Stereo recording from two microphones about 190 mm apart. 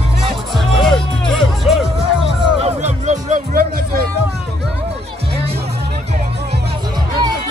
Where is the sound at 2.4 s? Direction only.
35° right (ahead or behind).